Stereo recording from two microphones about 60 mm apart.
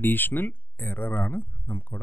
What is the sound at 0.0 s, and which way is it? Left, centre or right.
Speech, left.